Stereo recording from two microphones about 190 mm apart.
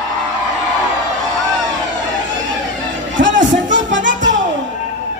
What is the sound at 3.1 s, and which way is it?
Music, 75° right (ahead or behind).